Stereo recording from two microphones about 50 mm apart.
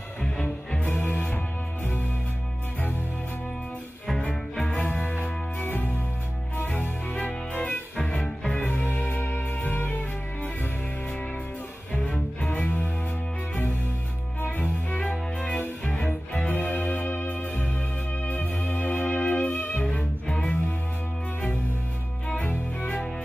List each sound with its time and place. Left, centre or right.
0.8 s music: left
4.7 s music: left
11.9 s cello: left
12.5 s music: left
14.6 s cello: left
15.8 s music: left
16.4 s music: left
20.2 s music: centre
22.3 s music: left